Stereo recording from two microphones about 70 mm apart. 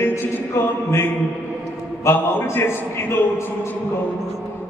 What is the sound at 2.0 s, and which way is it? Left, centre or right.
A man's voice, left.